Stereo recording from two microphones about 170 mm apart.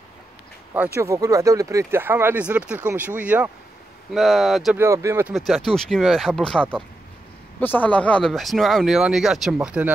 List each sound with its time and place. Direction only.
0.9 s speech: 20° right (ahead or behind); by 4.7 s centre (ahead or behind)
4.7 s speech: 15° right (ahead or behind)
5.3 s speech: centre (ahead or behind)